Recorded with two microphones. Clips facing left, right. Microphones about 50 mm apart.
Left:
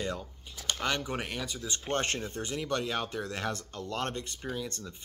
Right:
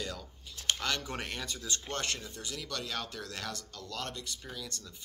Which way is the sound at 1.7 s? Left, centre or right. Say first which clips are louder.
Left 5 dB; left.